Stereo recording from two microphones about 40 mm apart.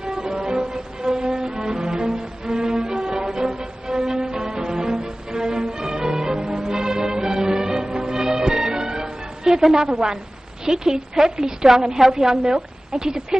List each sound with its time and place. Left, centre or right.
0.2 s music: centre
9.5 s a sound: centre
9.8 s a woman's voice: centre